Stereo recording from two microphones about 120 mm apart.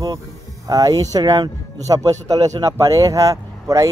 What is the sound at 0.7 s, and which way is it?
Speech, 30° right (ahead or behind).